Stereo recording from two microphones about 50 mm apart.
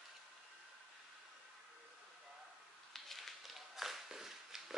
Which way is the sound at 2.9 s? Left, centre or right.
Centre.